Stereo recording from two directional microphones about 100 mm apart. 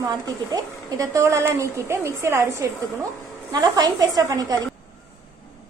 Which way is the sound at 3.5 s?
40° right (ahead or behind).